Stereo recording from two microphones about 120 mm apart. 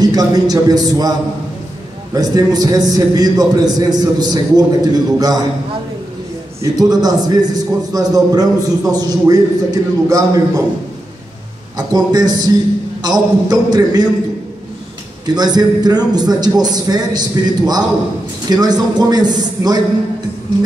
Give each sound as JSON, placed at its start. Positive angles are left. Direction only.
{"t": 0.0, "sound": "a man's voice", "side_deg": -30}
{"t": 2.1, "sound": "a man's voice", "side_deg": -30}
{"t": 6.6, "sound": "a man's voice", "side_deg": -30}
{"t": 11.7, "sound": "a man's voice", "side_deg": -35}
{"t": 15.2, "sound": "a man's voice", "side_deg": -35}